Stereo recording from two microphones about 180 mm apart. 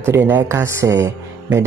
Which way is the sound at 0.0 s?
10° right (ahead or behind).